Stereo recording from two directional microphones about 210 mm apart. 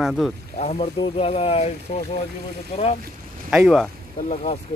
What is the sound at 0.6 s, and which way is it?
Speech, 30° left (ahead or behind).